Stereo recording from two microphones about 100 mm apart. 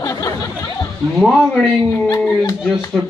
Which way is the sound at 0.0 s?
35° left (ahead or behind).